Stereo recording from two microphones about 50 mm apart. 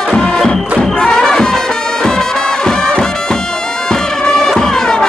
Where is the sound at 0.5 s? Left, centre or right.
Centre.